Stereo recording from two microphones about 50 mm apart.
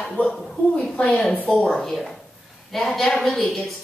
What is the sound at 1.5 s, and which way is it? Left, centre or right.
Speech, centre.